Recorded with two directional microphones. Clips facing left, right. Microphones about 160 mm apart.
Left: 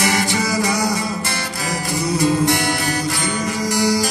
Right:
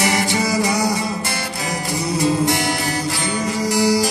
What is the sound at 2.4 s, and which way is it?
Music, 25° right (ahead or behind).